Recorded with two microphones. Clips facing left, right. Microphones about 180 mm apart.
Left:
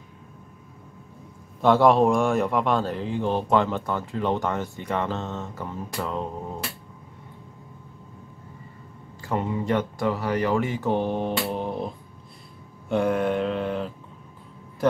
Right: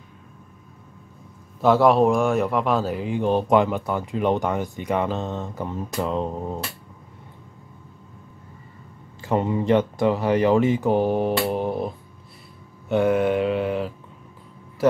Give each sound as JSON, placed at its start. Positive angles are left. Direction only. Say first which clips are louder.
{"t": 1.6, "sound": "a man's voice", "louder": "right 1 dB", "side_deg": 0}
{"t": 9.2, "sound": "speech", "louder": "right 4 dB", "side_deg": -25}
{"t": 11.5, "sound": "mantra", "louder": "right 4 dB", "side_deg": -5}